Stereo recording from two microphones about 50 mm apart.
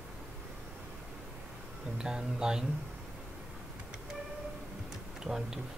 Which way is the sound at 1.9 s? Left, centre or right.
Centre.